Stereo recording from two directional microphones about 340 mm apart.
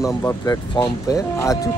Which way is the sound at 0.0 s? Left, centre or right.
Centre.